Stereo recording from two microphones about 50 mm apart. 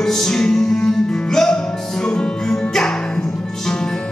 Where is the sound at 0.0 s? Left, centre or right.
Centre.